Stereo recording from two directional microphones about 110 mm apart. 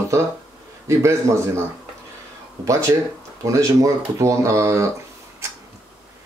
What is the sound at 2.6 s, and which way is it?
Speech, 30° right (ahead or behind).